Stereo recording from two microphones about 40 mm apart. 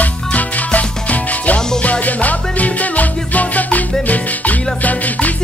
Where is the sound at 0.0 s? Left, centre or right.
Left.